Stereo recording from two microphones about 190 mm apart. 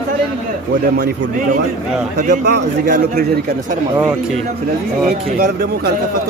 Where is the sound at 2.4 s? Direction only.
60° right (ahead or behind).